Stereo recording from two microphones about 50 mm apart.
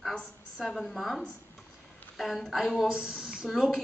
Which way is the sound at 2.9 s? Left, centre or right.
Centre.